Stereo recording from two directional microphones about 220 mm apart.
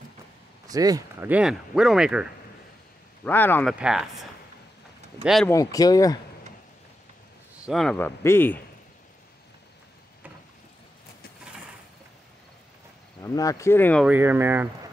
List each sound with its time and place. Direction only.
0.7 s speech: 15° right (ahead or behind)
3.3 s speech: 10° left (ahead or behind)
3.7 s speech: 5° right (ahead or behind)
5.5 s speech: 15° left (ahead or behind)
7.6 s speech: centre (ahead or behind)
13.2 s speech: 15° left (ahead or behind)
14.0 s speech: 10° right (ahead or behind)